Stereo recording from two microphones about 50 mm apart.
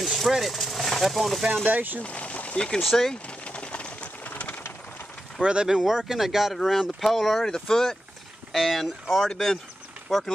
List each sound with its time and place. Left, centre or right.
0.0 s a sound: centre
1.7 s speech: right
2.0 s speech: left
2.8 s speech: centre
3.4 s a sound: left
5.4 s speech: centre
5.9 s speech: centre